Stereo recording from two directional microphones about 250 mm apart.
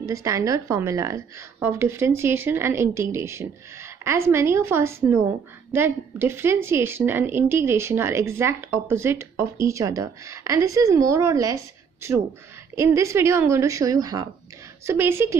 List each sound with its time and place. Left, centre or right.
0.0 s a woman's voice: centre